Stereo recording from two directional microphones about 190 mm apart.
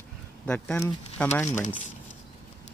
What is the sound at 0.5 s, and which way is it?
Speech, 5° left (ahead or behind).